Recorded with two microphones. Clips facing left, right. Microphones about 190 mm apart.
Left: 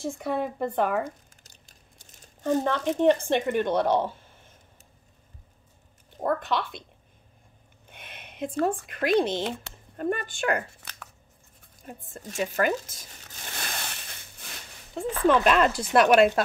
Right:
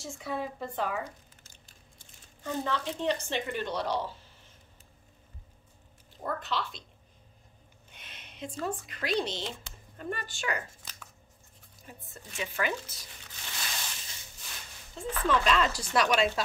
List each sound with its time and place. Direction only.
0.0 s speech: 55° left (ahead or behind)
2.0 s a sound: 45° left (ahead or behind)
6.1 s speech: 55° left (ahead or behind)
7.9 s speech: 55° left (ahead or behind)
11.8 s speech: 50° left (ahead or behind)
13.5 s a sound: 55° left (ahead or behind)
15.0 s speech: 60° left (ahead or behind)